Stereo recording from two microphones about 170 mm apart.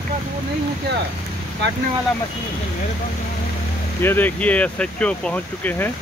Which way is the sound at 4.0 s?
10° left (ahead or behind).